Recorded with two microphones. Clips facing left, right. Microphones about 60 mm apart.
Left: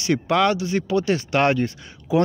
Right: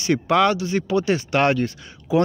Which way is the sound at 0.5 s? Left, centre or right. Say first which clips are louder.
Even; centre.